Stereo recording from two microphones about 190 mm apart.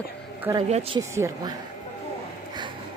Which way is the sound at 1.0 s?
15° right (ahead or behind).